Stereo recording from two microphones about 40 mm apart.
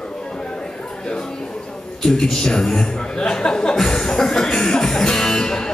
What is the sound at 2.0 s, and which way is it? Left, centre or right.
A man's voice, centre.